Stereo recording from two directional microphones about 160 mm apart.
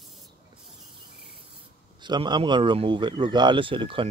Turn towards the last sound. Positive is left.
turn(degrees=-35)  # may be behind; listen again after turning